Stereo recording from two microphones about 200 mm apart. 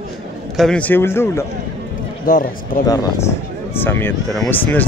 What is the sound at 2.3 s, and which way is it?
Speech, 45° left (ahead or behind).